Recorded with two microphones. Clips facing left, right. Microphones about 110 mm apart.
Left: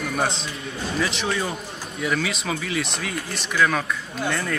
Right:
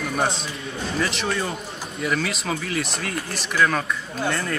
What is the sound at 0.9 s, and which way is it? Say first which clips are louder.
Speech: even; centre (ahead or behind).